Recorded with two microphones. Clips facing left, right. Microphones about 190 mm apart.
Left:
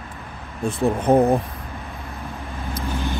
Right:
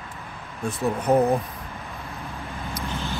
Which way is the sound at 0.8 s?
25° left (ahead or behind).